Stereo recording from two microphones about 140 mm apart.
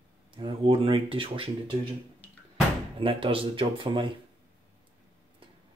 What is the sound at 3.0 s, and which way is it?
Speech, 40° right (ahead or behind).